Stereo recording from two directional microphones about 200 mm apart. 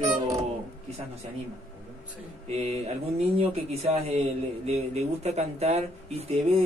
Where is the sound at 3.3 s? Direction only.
30° right (ahead or behind).